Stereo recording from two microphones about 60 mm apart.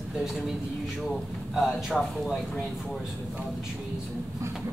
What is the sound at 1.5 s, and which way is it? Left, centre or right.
Speech, centre.